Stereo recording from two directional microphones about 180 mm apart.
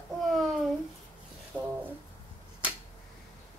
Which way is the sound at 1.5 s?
5° right (ahead or behind).